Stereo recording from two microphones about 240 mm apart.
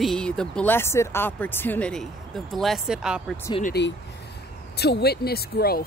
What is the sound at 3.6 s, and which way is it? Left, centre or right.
Speech, left.